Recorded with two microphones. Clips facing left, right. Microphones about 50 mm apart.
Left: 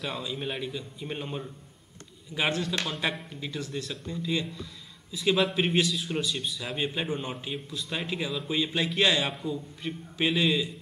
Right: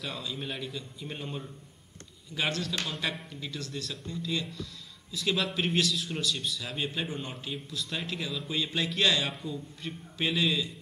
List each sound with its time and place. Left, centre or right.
0.0 s a man's voice: centre